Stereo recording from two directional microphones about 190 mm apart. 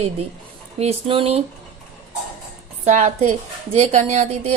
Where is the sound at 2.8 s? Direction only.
40° right (ahead or behind).